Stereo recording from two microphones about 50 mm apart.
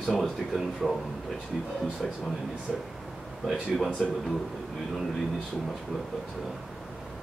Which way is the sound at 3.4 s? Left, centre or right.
Centre.